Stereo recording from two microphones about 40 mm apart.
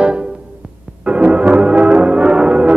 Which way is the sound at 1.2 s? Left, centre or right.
Right.